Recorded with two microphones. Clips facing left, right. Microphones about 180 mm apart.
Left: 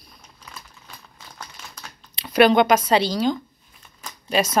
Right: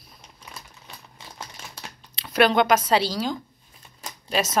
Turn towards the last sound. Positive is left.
turn(degrees=-5)  # may be behind; listen again after turning